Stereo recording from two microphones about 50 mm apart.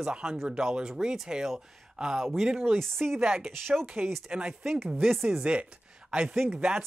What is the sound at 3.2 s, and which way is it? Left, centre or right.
Speech, centre.